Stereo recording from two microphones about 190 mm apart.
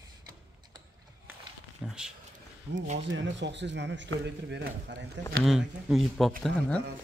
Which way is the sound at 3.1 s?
75° right (ahead or behind).